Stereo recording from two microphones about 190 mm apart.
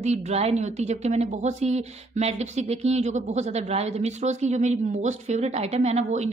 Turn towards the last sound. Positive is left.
turn(degrees=-35)  # may be behind; listen again after turning